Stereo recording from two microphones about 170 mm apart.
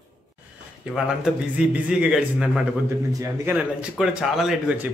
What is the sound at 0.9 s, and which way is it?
A man's voice, 5° right (ahead or behind).